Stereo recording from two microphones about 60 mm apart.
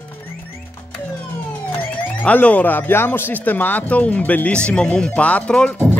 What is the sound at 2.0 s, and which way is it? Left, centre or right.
Speech, left.